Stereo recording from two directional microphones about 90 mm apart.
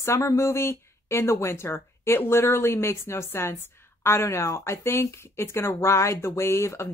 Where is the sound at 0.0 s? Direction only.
35° left (ahead or behind).